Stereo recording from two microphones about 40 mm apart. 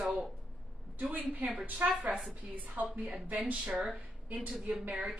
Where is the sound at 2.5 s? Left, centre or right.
Right.